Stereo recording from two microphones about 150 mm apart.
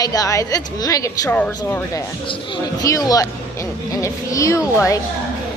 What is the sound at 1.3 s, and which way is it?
Speech, 10° left (ahead or behind).